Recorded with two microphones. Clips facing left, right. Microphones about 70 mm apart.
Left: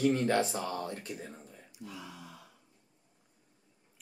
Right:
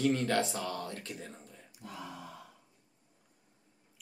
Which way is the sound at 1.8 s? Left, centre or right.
Right.